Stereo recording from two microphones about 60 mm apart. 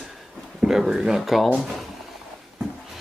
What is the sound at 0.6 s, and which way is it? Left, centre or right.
Speech, centre.